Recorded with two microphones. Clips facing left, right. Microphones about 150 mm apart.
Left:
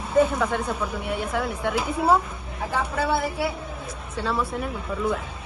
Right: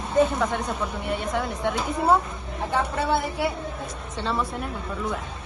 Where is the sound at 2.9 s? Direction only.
5° left (ahead or behind).